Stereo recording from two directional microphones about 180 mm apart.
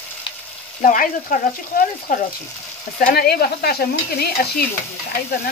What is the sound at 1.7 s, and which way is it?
Stir, 55° left (ahead or behind).